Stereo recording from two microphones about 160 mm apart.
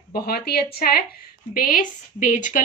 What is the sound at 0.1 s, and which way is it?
Speech, 75° left (ahead or behind).